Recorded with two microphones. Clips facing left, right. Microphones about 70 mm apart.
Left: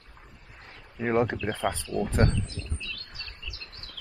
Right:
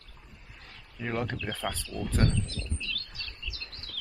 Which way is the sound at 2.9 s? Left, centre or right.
Left.